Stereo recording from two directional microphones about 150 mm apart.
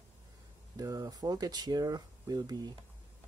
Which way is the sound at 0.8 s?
25° right (ahead or behind).